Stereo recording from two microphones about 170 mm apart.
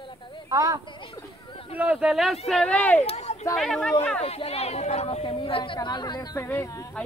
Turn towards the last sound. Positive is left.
turn(degrees=15)  # may be behind; listen again after turning